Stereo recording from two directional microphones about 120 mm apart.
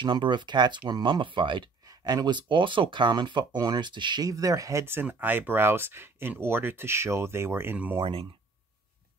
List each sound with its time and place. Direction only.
0.0 s speech: 40° right (ahead or behind); by 8.0 s 15° right (ahead or behind)
8.0 s speech: 50° right (ahead or behind)